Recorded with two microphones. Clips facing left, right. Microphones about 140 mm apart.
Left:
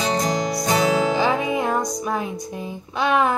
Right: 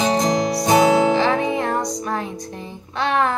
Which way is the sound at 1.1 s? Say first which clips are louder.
Right 2 dB; 10° left (ahead or behind).